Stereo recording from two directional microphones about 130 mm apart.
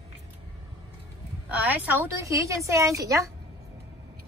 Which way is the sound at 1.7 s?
10° right (ahead or behind).